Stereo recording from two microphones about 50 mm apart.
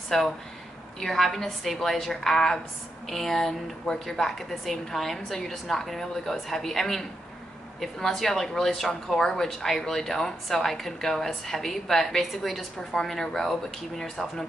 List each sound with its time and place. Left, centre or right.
0.1 s a woman's voice: centre